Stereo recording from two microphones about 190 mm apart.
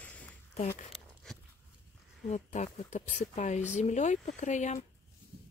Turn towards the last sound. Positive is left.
turn(degrees=40)  # may be behind; listen again after turning